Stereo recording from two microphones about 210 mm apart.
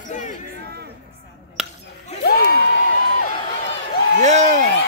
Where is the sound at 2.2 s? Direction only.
50° left (ahead or behind).